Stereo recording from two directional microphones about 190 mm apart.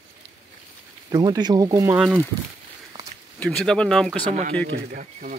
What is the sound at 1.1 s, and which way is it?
Speech, 20° right (ahead or behind).